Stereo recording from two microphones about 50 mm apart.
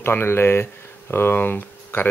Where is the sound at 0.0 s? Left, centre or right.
Left.